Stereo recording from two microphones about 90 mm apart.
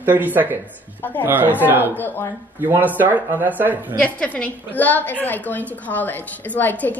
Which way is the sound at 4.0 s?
15° left (ahead or behind).